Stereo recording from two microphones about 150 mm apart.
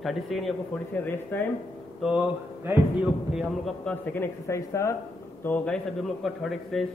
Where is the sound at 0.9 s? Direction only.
10° left (ahead or behind).